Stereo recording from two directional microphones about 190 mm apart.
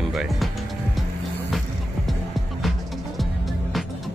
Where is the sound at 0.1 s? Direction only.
Centre (ahead or behind).